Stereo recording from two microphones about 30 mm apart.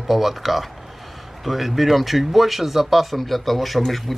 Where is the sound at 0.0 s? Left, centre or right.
Centre.